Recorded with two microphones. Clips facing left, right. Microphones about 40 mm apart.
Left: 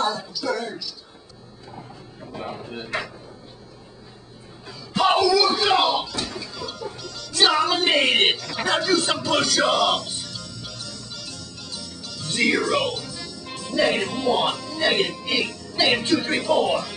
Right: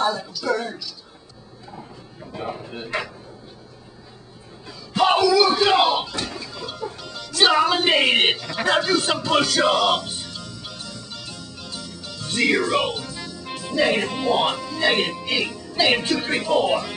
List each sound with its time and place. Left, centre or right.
0.4 s speech: centre
2.3 s speech: centre
4.6 s speech: centre
8.4 s music: centre
15.2 s speech: centre